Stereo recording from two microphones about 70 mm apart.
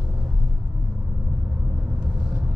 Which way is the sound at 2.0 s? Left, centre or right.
Centre.